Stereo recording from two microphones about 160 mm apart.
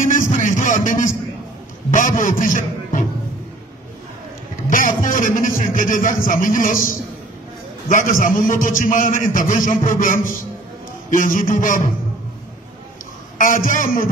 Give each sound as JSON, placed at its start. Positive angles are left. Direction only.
{"t": 0.0, "sound": "music", "side_deg": 55}
{"t": 1.9, "sound": "a sound", "side_deg": 55}
{"t": 4.6, "sound": "a sound", "side_deg": 55}
{"t": 5.8, "sound": "a man's voice", "side_deg": 55}
{"t": 7.9, "sound": "a man's voice", "side_deg": 60}
{"t": 13.4, "sound": "a man's voice", "side_deg": 55}